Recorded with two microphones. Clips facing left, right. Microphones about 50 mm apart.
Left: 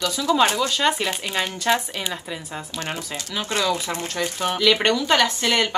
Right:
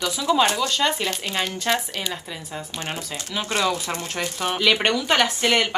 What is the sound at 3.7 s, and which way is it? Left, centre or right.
Speech, left.